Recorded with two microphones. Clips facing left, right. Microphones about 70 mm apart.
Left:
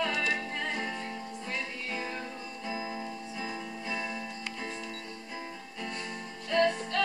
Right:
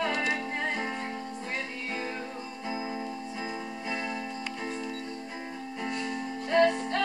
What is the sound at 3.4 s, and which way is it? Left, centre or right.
Music, right.